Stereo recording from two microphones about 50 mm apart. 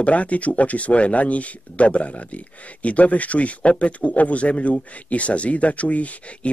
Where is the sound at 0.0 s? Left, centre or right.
Left.